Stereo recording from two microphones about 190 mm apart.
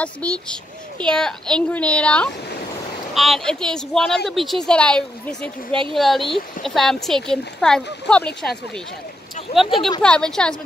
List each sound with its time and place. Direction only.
0.0 s speech: 5° left (ahead or behind)
5.7 s a woman's voice: 25° right (ahead or behind)
5.9 s speech: centre (ahead or behind)